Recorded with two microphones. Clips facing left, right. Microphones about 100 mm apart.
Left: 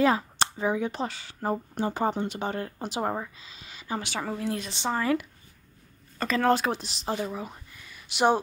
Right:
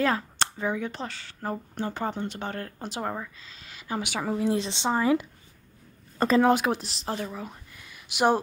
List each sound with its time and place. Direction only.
0.0 s speech: 10° left (ahead or behind); by 4.5 s 10° right (ahead or behind)
4.5 s speech: 25° right (ahead or behind)
6.1 s speech: 35° right (ahead or behind)
6.4 s speech: 10° right (ahead or behind)
7.2 s a sound: 5° left (ahead or behind)